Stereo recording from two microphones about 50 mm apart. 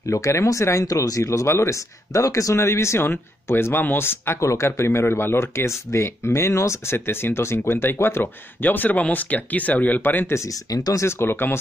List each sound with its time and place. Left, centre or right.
0.1 s speech: left
3.5 s speech: left
4.4 s speech: left
4.6 s speech: left
10.2 s speech: left